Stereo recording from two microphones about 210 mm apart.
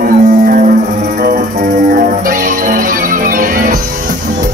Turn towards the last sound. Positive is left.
turn(degrees=-40)  # may be behind; listen again after turning